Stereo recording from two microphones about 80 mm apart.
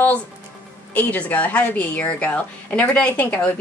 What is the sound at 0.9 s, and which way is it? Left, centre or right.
Speech, centre.